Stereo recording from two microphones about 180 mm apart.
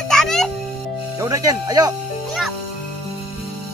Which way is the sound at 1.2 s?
20° right (ahead or behind).